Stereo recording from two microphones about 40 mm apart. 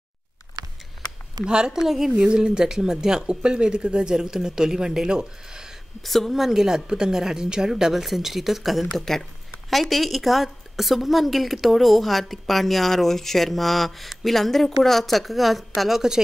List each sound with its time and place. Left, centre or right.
1.4 s a woman's voice: centre
1.8 s speech: centre
2.0 s speech: right
6.0 s a woman's voice: centre
6.3 s a woman's voice: centre